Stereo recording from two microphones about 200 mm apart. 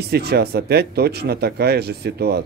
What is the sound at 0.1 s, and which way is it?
Speech, 55° right (ahead or behind).